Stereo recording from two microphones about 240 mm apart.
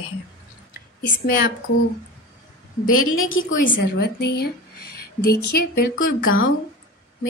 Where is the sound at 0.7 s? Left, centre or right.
Left.